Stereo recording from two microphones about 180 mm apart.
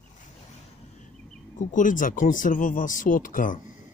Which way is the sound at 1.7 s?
45° left (ahead or behind).